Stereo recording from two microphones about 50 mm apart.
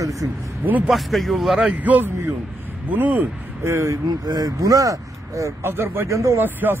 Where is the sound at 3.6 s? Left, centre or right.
Right.